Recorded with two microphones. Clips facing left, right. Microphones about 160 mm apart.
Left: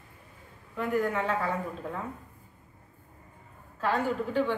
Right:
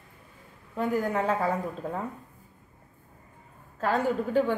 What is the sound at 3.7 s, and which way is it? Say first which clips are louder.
Speech: right 2 dB; 45° right (ahead or behind).